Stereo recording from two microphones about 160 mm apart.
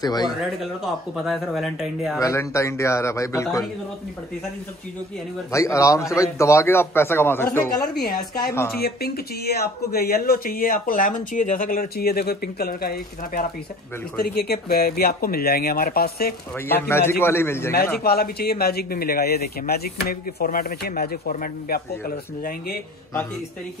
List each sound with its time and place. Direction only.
0.0 s speech: 25° left (ahead or behind)
1.1 s speech: centre (ahead or behind)
2.1 s a man's voice: 20° left (ahead or behind)
5.5 s a man's voice: 20° left (ahead or behind)
8.0 s speech: 70° left (ahead or behind)
16.6 s a man's voice: 15° left (ahead or behind)
18.0 s speech: 75° left (ahead or behind)